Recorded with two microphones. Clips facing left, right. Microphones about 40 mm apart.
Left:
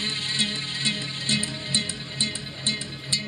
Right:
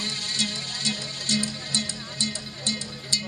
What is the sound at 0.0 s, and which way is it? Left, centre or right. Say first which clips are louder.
Music: left 2 dB; left.